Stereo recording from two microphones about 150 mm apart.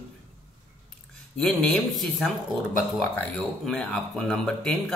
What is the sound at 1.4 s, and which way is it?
Speech, 5° left (ahead or behind).